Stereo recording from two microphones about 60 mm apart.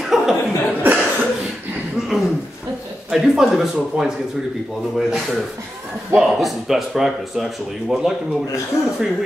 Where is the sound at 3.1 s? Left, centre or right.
Centre.